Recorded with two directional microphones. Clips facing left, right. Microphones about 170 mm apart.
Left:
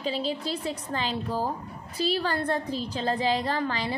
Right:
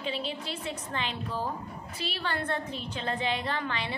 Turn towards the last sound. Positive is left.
turn(degrees=35)  # may be behind; listen again after turning